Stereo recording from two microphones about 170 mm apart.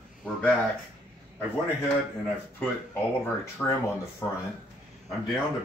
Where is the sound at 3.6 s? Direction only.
5° left (ahead or behind).